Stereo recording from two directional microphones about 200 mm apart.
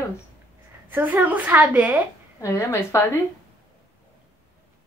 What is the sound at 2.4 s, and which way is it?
Speech, 15° left (ahead or behind).